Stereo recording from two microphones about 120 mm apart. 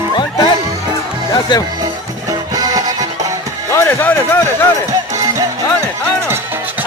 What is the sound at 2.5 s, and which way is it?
Music, 30° right (ahead or behind).